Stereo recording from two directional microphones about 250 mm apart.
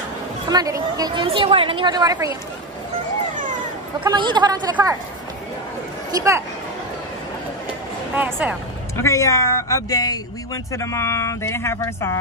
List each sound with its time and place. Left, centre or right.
0.5 s a woman's voice: centre
4.0 s a woman's voice: centre
6.1 s a woman's voice: centre
8.2 s a woman's voice: centre
8.9 s speech: centre